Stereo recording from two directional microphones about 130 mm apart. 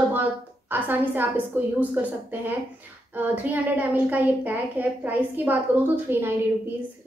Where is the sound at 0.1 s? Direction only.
15° right (ahead or behind).